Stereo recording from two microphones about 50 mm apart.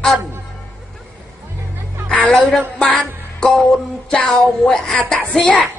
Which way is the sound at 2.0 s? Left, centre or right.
Left.